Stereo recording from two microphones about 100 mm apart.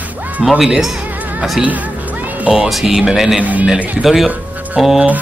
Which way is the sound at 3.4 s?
15° right (ahead or behind).